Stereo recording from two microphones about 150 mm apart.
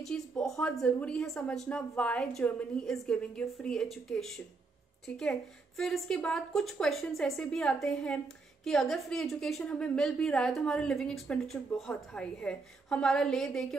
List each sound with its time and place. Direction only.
0.0 s a woman's voice: 5° left (ahead or behind)